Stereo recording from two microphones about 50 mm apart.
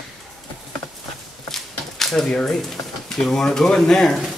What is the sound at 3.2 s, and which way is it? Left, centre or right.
Speech, centre.